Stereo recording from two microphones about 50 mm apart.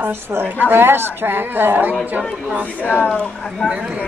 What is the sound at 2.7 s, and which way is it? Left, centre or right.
Speech, left.